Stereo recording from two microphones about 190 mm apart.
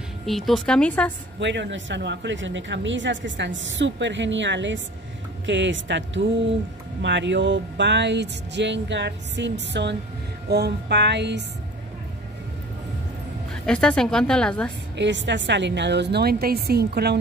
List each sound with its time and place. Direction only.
0.3 s a woman's voice: centre (ahead or behind)
1.4 s a woman's voice: 70° right (ahead or behind)
13.5 s a woman's voice: 5° left (ahead or behind)
15.0 s a woman's voice: 70° right (ahead or behind)